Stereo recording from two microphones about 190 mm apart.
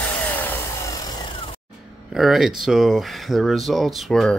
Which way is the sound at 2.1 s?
Centre (ahead or behind).